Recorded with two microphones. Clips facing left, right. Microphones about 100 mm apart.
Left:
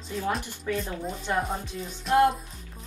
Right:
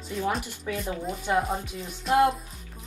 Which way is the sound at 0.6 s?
10° right (ahead or behind).